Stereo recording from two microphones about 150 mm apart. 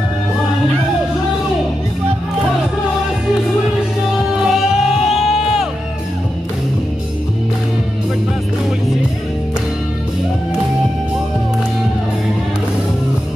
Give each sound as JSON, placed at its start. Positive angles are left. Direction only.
{"t": 4.5, "sound": "music", "side_deg": -5}